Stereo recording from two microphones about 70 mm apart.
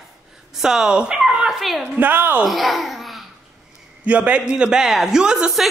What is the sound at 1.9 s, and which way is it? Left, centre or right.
Speech, right.